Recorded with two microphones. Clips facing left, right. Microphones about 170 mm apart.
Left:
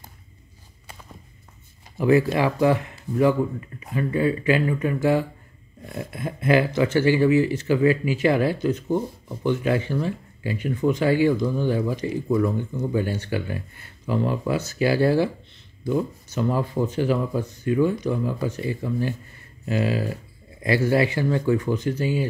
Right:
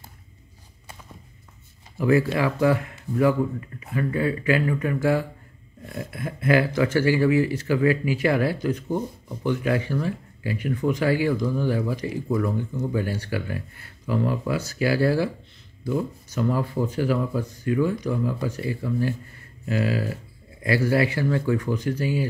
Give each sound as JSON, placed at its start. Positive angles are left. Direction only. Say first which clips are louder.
{"t": 2.0, "sound": "speech", "louder": "left 2 dB", "side_deg": 20}